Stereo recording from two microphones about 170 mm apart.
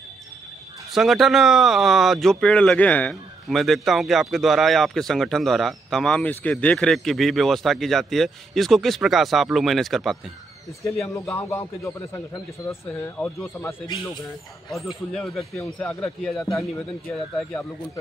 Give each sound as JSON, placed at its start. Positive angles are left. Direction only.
{"t": 0.9, "sound": "speech", "side_deg": 0}
{"t": 11.1, "sound": "speech", "side_deg": 15}
{"t": 14.9, "sound": "speech", "side_deg": 0}